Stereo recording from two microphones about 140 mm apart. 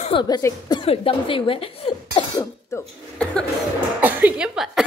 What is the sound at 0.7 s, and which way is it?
Speech, 40° left (ahead or behind).